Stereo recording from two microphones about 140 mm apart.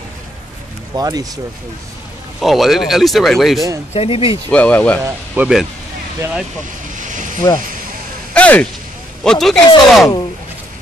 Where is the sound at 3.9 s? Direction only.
40° left (ahead or behind).